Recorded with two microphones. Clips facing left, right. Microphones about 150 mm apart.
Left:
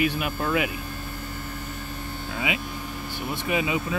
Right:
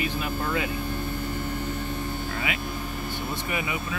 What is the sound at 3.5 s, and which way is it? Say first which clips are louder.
Speech: left 8 dB; 20° left (ahead or behind).